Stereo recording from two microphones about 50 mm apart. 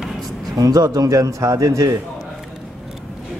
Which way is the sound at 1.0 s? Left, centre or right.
Right.